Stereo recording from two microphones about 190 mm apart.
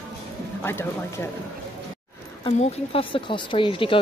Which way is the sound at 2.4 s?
30° left (ahead or behind).